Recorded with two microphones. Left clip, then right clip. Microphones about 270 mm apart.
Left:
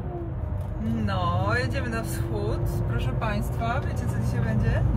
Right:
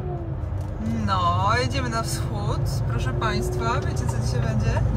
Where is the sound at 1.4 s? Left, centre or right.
Centre.